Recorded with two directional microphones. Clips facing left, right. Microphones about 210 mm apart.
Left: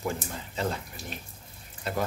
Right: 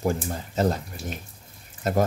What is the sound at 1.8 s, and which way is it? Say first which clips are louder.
Speech: right 7 dB; 45° right (ahead or behind).